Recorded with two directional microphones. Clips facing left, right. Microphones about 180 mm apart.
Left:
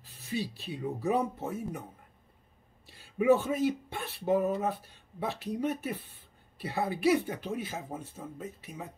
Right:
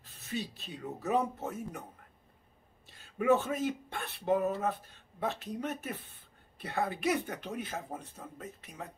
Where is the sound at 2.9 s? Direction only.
10° left (ahead or behind).